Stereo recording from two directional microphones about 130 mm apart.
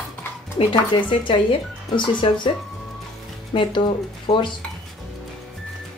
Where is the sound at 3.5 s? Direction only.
40° left (ahead or behind).